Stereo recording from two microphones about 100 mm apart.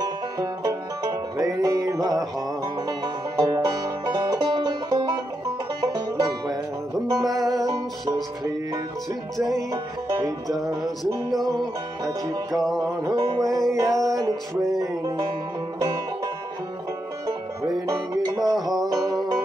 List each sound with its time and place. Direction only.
0.0 s music: 40° right (ahead or behind)
3.3 s music: 40° right (ahead or behind)
10.0 s music: 35° right (ahead or behind)
12.5 s music: centre (ahead or behind)
13.0 s music: 40° right (ahead or behind)
17.6 s music: 35° right (ahead or behind)